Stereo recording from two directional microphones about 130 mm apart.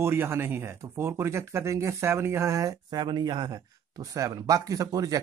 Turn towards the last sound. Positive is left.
turn(degrees=-25)  # may be behind; listen again after turning